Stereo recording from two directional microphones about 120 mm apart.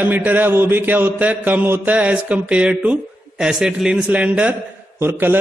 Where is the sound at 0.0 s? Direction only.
15° right (ahead or behind).